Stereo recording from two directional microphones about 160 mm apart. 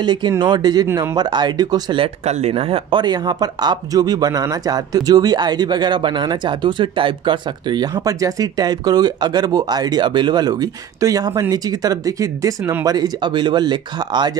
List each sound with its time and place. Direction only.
0.0 s speech: 25° right (ahead or behind)
0.8 s speech: 15° right (ahead or behind)
1.1 s speech: 25° right (ahead or behind)
2.2 s speech: 40° right (ahead or behind); by 14.3 s 25° right (ahead or behind)